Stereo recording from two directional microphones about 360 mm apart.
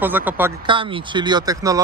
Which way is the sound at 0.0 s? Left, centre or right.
Centre.